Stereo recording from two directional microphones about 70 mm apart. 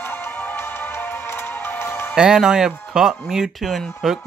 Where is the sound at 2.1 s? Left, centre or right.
Centre.